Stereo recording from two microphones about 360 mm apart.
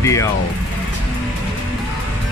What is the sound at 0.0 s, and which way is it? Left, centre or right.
Speech, centre.